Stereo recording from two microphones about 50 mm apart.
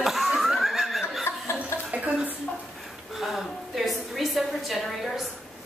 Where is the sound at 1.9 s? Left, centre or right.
Right.